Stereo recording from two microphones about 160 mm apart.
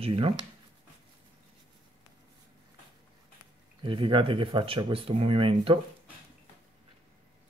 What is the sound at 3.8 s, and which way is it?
Speech, 30° right (ahead or behind).